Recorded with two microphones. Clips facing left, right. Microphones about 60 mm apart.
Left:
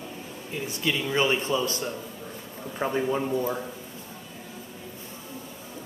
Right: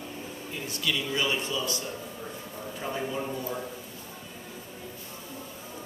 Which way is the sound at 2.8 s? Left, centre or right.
Left.